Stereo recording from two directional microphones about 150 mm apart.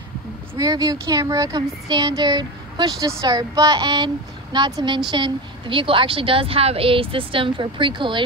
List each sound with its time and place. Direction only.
0.6 s a child's voice: 25° right (ahead or behind)